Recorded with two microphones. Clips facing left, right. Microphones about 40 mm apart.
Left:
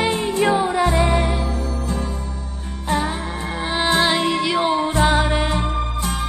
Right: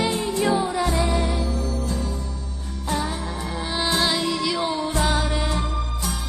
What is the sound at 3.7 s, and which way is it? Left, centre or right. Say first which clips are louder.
Music: left 5 dB; left.